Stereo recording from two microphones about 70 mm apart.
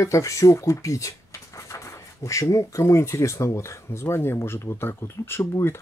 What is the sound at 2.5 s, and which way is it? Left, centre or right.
Speech, left.